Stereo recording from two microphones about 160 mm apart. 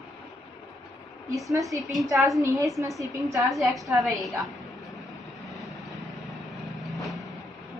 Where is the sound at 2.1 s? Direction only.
Centre (ahead or behind).